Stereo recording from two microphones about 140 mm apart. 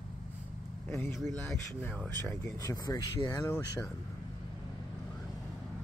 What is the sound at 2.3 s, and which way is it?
Speech, 25° left (ahead or behind).